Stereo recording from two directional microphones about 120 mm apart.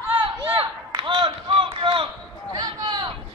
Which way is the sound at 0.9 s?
45° right (ahead or behind).